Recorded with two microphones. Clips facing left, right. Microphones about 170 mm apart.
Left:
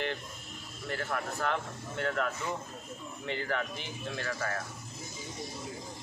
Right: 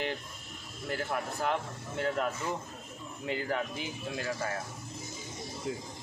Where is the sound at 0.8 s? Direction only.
10° right (ahead or behind).